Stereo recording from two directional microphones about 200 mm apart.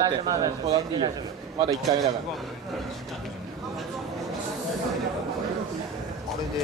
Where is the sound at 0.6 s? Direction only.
30° right (ahead or behind).